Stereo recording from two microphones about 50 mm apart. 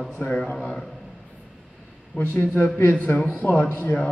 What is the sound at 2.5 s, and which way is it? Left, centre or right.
Speech, left.